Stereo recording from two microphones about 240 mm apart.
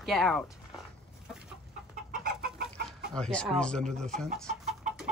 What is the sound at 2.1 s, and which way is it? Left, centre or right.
Chicken, right.